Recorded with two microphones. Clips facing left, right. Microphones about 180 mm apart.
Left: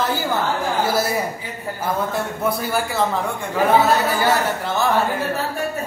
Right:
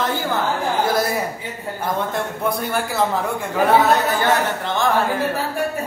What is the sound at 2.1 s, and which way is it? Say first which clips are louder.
Speech: even; 5° left (ahead or behind).